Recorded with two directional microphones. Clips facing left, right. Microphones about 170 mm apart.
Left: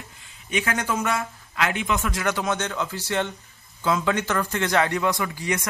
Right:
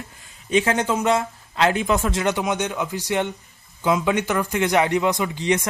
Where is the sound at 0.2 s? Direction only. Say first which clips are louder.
Right 7 dB; 30° right (ahead or behind).